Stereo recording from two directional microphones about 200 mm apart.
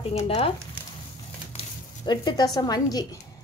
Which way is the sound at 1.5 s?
20° left (ahead or behind).